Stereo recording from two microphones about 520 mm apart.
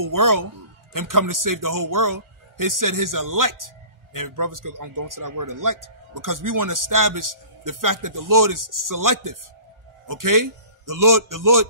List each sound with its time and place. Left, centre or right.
0.0 s a man's voice: right